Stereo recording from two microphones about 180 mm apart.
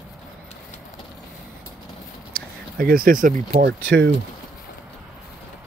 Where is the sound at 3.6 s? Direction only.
70° right (ahead or behind).